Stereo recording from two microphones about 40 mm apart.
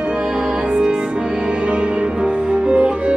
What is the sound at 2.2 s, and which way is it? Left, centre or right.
Music, right.